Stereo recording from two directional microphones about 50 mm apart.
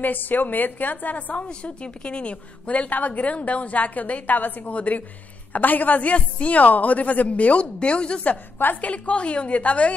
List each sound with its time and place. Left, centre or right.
0.0 s a woman's voice: left